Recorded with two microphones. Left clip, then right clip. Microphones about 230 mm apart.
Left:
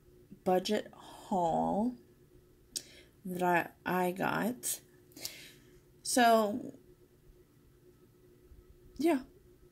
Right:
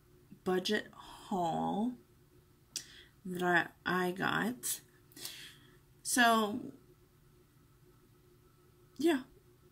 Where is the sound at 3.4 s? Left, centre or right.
Centre.